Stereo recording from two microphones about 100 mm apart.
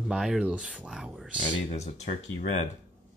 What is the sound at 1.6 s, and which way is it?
Speech, 90° left.